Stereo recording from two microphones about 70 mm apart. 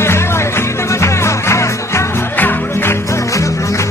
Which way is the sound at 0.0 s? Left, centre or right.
Left.